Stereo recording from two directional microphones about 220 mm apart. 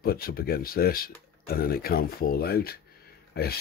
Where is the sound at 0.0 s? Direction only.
45° left (ahead or behind).